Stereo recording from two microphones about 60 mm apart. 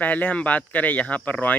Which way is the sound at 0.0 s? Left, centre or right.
Left.